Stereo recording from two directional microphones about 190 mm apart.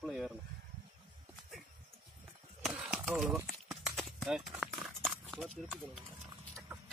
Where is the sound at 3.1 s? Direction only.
Centre (ahead or behind).